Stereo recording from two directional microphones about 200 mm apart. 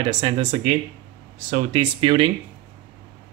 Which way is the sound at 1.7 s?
25° right (ahead or behind).